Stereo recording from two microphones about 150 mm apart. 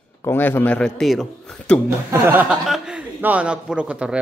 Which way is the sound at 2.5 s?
5° right (ahead or behind).